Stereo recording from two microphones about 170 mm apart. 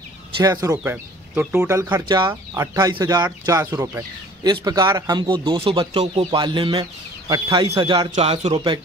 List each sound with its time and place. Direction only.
0.4 s speech: 20° right (ahead or behind)
0.8 s speech: 10° right (ahead or behind)
1.8 s a man's voice: 20° right (ahead or behind); by 8.7 s 35° right (ahead or behind)